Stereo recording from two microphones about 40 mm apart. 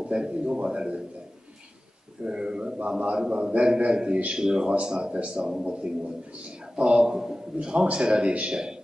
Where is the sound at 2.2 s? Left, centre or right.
Right.